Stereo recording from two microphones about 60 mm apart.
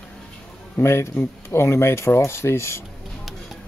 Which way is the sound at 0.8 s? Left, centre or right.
Left.